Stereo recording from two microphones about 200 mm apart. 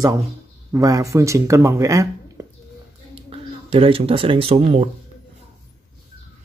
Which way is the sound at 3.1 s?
30° right (ahead or behind).